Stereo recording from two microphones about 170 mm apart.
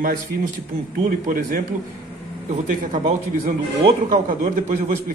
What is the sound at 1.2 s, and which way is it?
Speech, 55° right (ahead or behind).